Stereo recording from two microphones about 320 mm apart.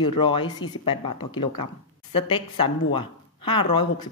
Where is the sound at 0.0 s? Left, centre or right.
Centre.